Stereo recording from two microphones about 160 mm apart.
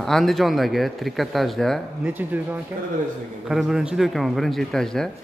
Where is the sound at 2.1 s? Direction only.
10° right (ahead or behind).